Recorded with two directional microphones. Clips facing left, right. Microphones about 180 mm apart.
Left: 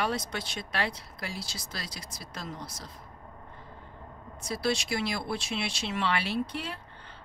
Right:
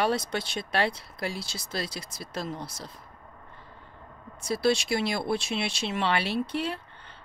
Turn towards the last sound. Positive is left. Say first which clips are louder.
# right 3 dB
turn(degrees=-25)  # may be behind; listen again after turning